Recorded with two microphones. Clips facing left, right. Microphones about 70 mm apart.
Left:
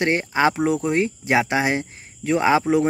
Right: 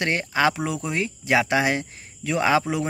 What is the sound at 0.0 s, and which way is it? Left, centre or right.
Speech, left.